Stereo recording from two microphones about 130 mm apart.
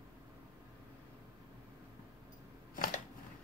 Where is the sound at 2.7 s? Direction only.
90° left.